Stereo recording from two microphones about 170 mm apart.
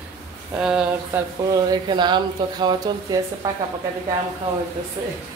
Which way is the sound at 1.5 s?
25° right (ahead or behind).